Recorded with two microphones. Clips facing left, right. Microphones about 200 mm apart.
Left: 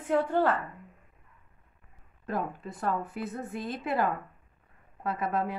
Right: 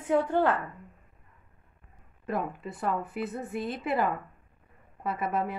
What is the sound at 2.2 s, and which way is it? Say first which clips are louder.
Speech: right 1 dB; 5° right (ahead or behind).